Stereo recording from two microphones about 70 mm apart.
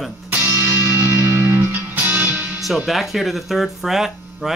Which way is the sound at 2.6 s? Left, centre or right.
Centre.